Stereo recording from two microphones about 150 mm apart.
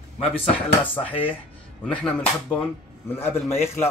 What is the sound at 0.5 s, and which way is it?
Speech, 10° left (ahead or behind).